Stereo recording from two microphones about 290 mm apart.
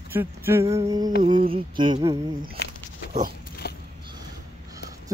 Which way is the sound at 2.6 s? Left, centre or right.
Left.